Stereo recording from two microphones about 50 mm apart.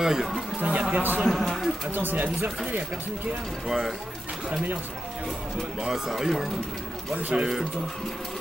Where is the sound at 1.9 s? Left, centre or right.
Right.